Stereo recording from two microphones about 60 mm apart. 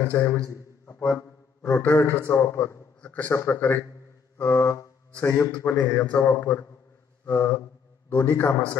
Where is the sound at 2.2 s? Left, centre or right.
Left.